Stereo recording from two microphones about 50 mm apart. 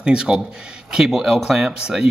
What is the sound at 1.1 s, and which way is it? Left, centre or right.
Speech, centre.